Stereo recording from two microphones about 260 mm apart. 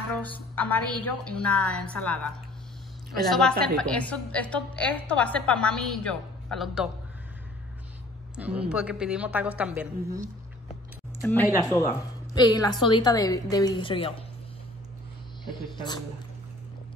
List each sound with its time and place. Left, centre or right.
0.6 s a woman's voice: centre
8.4 s a woman's voice: centre
11.1 s a woman's voice: centre